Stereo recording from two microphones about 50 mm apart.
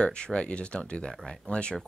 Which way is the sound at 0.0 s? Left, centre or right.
Centre.